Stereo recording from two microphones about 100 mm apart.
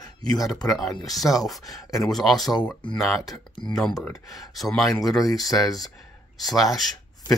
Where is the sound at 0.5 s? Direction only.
35° left (ahead or behind).